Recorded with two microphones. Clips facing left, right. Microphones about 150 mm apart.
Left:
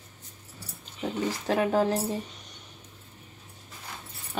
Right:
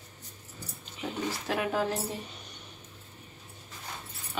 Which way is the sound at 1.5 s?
35° left (ahead or behind).